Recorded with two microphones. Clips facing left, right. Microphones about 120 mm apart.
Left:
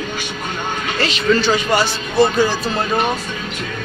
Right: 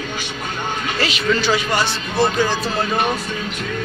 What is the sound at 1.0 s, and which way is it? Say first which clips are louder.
Speech: left 4 dB; 5° right (ahead or behind).